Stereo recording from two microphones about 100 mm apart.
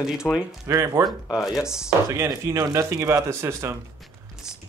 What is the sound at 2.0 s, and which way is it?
Speech, 30° right (ahead or behind).